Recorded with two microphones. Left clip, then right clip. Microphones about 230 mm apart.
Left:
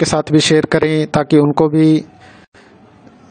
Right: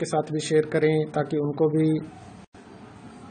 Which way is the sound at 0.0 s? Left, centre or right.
Left.